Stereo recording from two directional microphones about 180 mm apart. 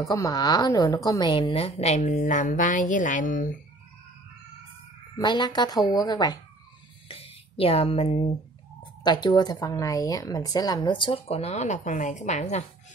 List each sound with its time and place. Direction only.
0.0 s a woman's voice: 20° left (ahead or behind); by 3.4 s 45° left (ahead or behind)
5.1 s speech: 25° left (ahead or behind)
7.1 s speech: 30° left (ahead or behind)